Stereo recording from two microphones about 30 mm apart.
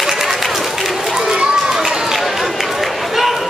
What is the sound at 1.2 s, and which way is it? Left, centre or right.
Run, right.